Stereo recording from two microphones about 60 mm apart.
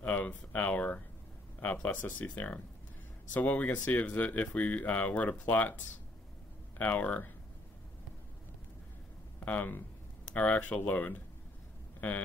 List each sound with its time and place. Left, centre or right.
0.0 s speech: left
6.8 s speech: left
9.4 s speech: left